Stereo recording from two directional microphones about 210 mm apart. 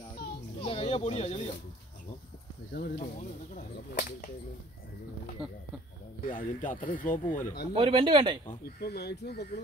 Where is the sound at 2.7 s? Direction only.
45° left (ahead or behind).